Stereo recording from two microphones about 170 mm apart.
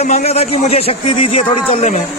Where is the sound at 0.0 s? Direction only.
40° left (ahead or behind).